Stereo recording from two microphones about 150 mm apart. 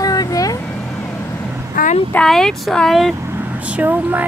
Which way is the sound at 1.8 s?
70° left (ahead or behind).